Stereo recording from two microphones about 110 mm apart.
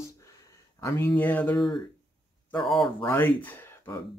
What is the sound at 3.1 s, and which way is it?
Speech, 15° left (ahead or behind).